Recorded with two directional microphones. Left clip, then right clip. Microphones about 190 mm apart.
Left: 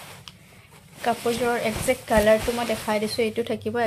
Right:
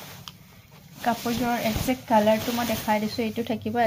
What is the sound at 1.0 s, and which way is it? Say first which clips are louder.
Speech: left 3 dB; 15° left (ahead or behind).